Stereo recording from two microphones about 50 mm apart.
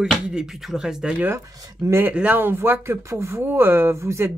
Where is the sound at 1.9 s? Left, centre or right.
Right.